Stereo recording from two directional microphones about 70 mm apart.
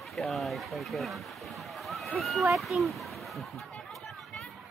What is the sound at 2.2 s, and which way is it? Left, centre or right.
Speech, centre.